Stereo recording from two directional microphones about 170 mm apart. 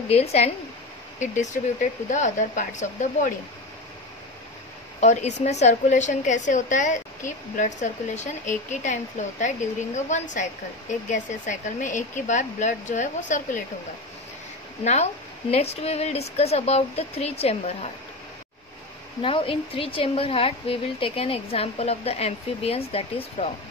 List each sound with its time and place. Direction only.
0.1 s a woman's voice: 40° left (ahead or behind)
5.0 s a woman's voice: 40° left (ahead or behind)
15.5 s a woman's voice: 35° left (ahead or behind)
19.2 s a woman's voice: 30° left (ahead or behind)